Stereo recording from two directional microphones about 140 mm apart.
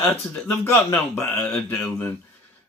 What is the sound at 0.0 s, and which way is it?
Speech, 15° left (ahead or behind).